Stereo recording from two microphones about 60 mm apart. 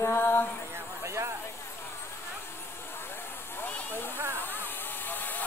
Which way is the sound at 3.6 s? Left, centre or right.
Left.